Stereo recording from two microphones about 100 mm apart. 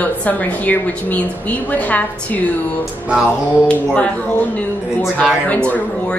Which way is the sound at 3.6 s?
10° left (ahead or behind).